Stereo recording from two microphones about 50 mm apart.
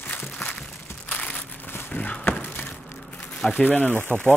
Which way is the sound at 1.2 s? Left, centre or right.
Left.